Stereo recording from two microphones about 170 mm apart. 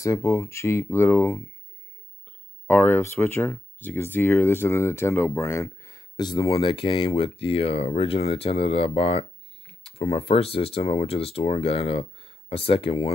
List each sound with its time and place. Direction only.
0.0 s speech: 15° left (ahead or behind); by 13.1 s 35° left (ahead or behind)